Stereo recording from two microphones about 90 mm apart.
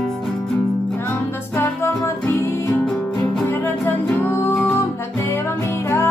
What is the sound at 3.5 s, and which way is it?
Music, 20° left (ahead or behind).